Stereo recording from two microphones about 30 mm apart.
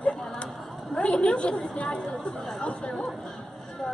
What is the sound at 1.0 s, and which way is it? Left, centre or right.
A woman's voice, left.